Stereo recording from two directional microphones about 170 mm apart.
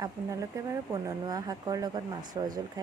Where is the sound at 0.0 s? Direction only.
20° right (ahead or behind).